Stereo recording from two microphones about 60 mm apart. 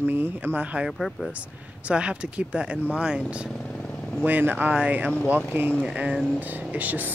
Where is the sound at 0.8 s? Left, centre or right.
Centre.